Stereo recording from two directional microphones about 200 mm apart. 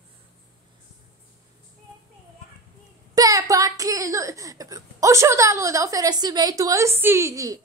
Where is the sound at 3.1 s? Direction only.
20° right (ahead or behind).